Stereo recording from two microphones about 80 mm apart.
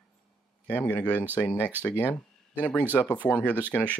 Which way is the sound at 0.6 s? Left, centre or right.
Left.